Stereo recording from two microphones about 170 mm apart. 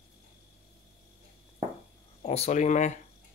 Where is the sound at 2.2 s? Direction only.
40° left (ahead or behind).